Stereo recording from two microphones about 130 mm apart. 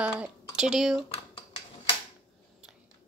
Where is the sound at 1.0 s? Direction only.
45° left (ahead or behind).